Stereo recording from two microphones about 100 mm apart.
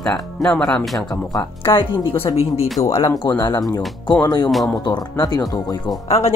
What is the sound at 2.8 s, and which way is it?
Speech, 30° left (ahead or behind).